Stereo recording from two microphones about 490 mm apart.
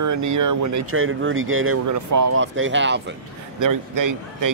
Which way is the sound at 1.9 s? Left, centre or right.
Right.